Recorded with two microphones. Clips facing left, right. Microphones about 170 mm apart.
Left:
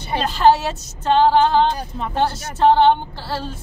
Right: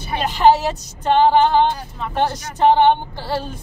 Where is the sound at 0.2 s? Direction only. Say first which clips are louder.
Right 1 dB; 15° right (ahead or behind).